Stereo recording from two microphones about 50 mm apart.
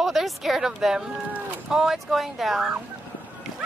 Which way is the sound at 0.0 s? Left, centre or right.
Centre.